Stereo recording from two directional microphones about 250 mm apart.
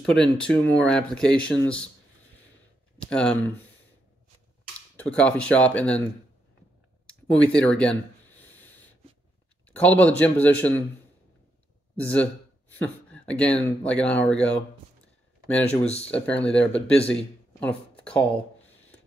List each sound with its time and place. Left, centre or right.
0.0 s speech: centre
3.0 s speech: centre
4.9 s speech: centre
7.1 s a sound: centre
9.7 s speech: centre
12.0 s speech: centre
15.8 s speech: left
16.1 s speech: centre
17.1 s a sound: centre